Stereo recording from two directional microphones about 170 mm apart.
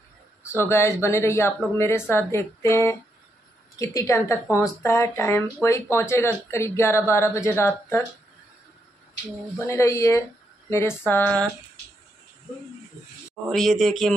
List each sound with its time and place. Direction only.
0.5 s speech: 15° left (ahead or behind)
9.6 s speech: 20° left (ahead or behind)
13.5 s speech: centre (ahead or behind)